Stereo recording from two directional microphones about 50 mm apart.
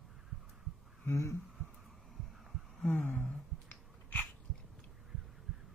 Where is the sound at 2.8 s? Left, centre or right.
Centre.